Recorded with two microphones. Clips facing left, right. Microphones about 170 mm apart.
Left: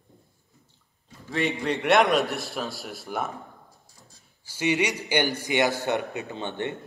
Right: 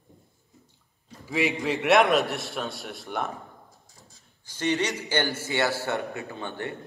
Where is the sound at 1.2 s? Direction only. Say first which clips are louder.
Even; 5° right (ahead or behind).